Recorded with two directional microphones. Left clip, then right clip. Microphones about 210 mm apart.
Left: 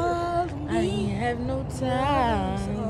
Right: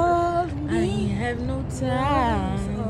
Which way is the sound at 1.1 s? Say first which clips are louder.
Even; 15° left (ahead or behind).